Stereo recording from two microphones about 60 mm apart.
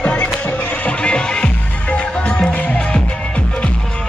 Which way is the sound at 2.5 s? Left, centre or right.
Left.